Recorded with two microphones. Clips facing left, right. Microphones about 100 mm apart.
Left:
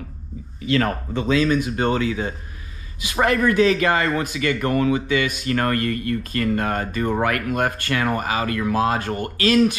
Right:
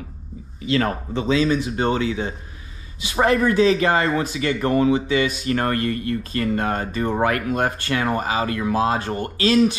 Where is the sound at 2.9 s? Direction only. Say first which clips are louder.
Right 1 dB; 30° right (ahead or behind).